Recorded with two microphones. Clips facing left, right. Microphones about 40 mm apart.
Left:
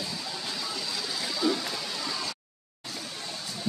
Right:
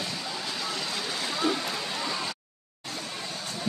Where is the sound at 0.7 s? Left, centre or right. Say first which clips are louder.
Right 2 dB; right.